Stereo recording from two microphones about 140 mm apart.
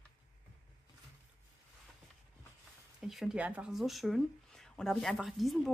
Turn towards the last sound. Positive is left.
turn(degrees=0)  # may be behind; listen again after turning